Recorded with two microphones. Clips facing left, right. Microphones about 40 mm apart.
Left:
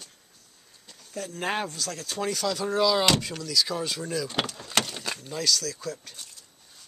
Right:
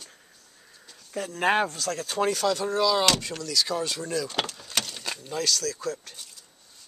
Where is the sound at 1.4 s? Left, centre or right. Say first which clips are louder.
Right 6 dB; right.